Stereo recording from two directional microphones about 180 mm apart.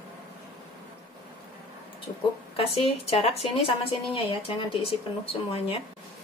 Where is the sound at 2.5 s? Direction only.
30° left (ahead or behind).